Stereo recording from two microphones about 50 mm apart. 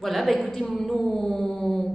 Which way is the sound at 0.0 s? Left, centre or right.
Centre.